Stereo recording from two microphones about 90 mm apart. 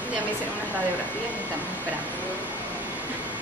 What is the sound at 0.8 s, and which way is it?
Speech, 15° right (ahead or behind).